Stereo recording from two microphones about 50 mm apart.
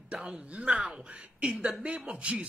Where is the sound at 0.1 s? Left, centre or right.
Centre.